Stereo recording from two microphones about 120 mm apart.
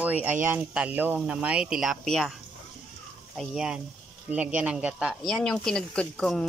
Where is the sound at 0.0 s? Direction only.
15° right (ahead or behind); by 2.3 s centre (ahead or behind).